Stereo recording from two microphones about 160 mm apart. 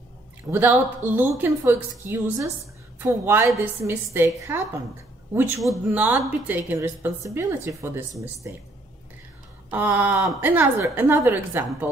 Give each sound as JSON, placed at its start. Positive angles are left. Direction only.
{"t": 0.5, "sound": "a woman's voice", "side_deg": -10}
{"t": 9.7, "sound": "a woman's voice", "side_deg": -10}